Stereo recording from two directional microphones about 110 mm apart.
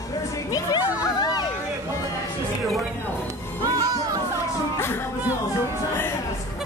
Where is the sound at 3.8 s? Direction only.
35° right (ahead or behind).